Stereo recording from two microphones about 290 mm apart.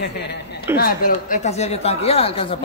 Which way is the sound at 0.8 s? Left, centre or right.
Left.